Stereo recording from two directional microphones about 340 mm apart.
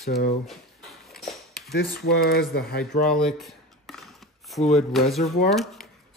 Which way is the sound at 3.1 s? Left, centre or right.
Centre.